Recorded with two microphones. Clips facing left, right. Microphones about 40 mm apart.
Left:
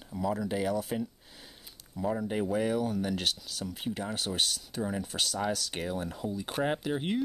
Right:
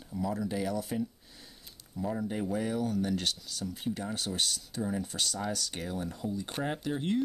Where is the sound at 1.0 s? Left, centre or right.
Left.